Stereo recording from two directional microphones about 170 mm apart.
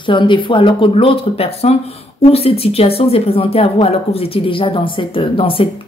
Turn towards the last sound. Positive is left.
turn(degrees=30)  # may be behind; listen again after turning